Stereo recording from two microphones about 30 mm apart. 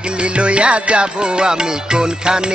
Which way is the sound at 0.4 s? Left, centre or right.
Right.